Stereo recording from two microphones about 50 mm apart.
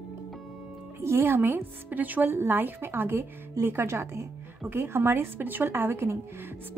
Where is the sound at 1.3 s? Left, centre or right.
Right.